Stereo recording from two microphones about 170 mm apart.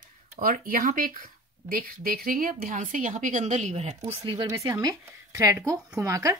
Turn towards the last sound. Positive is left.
turn(degrees=-20)  # may be behind; listen again after turning